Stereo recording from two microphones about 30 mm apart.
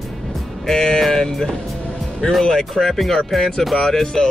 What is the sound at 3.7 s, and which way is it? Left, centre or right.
Speech, centre.